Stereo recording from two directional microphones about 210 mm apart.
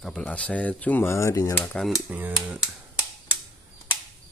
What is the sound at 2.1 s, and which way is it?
Speech, 10° right (ahead or behind).